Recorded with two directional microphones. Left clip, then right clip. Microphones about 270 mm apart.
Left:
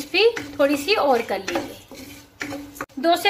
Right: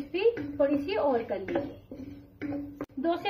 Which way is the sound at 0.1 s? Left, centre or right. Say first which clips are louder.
Left 9 dB; left.